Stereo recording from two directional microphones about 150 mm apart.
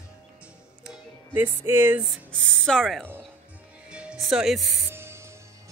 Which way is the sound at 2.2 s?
5° left (ahead or behind).